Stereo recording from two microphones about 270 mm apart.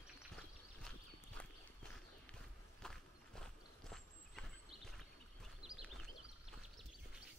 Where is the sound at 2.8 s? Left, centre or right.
Centre.